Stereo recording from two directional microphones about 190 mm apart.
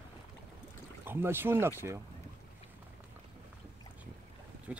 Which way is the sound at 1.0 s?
10° right (ahead or behind).